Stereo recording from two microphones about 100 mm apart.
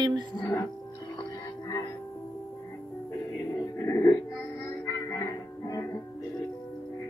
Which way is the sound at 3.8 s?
25° left (ahead or behind).